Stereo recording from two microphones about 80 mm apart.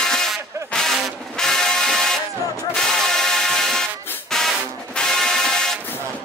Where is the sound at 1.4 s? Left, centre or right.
Centre.